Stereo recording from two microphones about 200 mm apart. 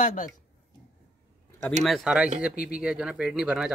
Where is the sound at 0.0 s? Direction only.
40° left (ahead or behind).